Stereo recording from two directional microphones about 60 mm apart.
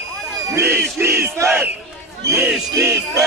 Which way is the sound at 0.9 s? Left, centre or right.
Right.